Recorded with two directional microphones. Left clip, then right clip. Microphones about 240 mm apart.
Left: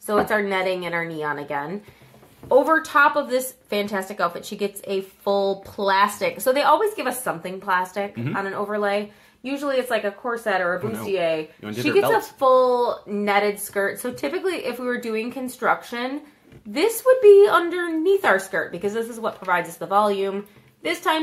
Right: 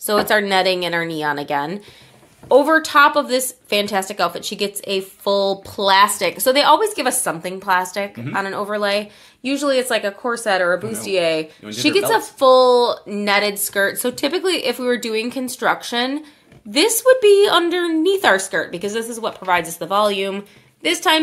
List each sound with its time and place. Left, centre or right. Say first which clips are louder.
0.0 s a woman's voice: right 4 dB; right